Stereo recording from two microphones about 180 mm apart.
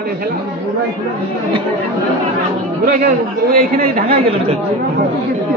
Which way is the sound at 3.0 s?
50° right (ahead or behind).